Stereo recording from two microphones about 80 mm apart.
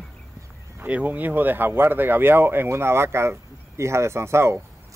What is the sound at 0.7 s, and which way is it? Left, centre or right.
Speech, centre.